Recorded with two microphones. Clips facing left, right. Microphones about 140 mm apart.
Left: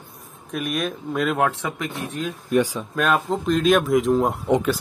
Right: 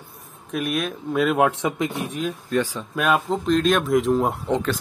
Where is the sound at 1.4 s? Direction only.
20° right (ahead or behind).